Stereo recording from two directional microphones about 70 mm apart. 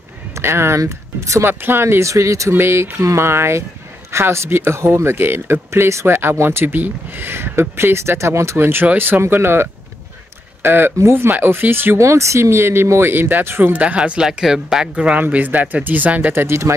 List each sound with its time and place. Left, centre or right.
0.3 s speech: right
1.5 s speech: right
12.0 s speech: right
13.7 s speech: centre
15.2 s speech: right
16.4 s speech: right